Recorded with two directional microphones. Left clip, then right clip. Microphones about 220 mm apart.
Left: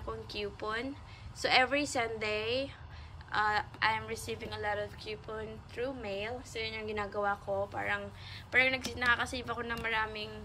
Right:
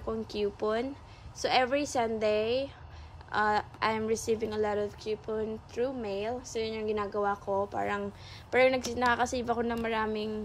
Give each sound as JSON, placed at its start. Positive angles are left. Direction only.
{"t": 0.3, "sound": "a woman's voice", "side_deg": -20}